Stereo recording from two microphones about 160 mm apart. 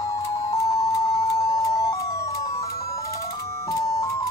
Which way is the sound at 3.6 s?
20° left (ahead or behind).